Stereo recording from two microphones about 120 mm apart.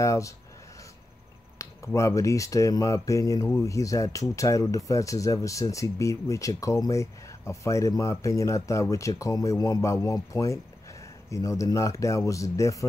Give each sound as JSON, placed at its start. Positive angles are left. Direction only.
{"t": 0.0, "sound": "speech", "side_deg": 25}
{"t": 1.6, "sound": "speech", "side_deg": 25}